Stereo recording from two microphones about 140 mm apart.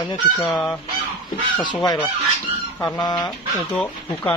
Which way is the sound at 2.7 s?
5° left (ahead or behind).